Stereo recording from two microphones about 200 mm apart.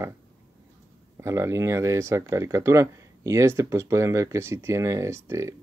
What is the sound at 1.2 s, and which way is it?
Speech, 15° right (ahead or behind).